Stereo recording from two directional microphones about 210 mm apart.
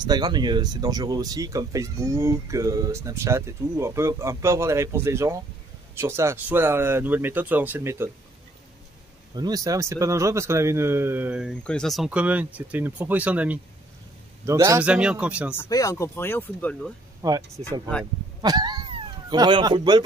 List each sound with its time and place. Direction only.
0.0 s speech: 20° right (ahead or behind)
9.3 s a man's voice: 20° right (ahead or behind)
15.5 s speech: 15° left (ahead or behind)
17.2 s speech: 15° right (ahead or behind)
18.4 s a sound: 20° right (ahead or behind)